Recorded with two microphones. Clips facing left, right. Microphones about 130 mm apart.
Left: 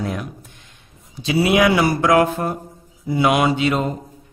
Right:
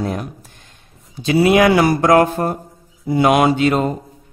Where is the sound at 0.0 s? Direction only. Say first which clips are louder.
Right 3 dB; 35° right (ahead or behind).